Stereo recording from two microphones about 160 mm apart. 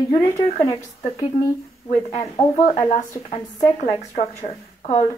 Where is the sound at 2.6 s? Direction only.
50° left (ahead or behind).